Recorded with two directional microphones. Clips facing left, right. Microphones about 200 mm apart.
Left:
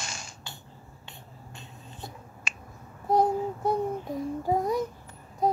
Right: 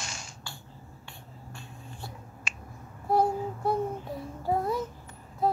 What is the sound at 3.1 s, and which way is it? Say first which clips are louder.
Child singing: left 2 dB; 20° left (ahead or behind).